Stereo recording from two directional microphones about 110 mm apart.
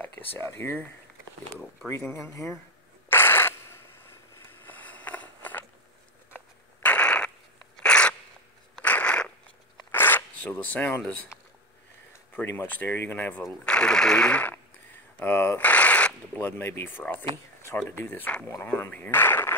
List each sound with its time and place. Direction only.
0.0 s speech: 20° left (ahead or behind)
2.1 s speech: 25° left (ahead or behind)
3.1 s a sound: 20° left (ahead or behind)
9.8 s zipper: 20° left (ahead or behind)
12.4 s speech: 20° left (ahead or behind)
13.4 s speech: 5° left (ahead or behind)